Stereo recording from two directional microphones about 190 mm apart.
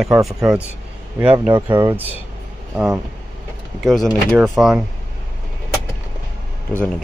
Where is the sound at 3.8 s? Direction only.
Centre (ahead or behind).